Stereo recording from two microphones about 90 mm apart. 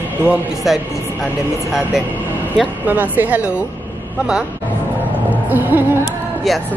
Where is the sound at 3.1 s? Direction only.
20° right (ahead or behind).